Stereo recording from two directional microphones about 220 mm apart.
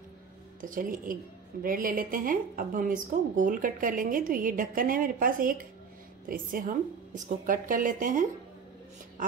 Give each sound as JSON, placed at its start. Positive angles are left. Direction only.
{"t": 0.6, "sound": "a woman's voice", "side_deg": -40}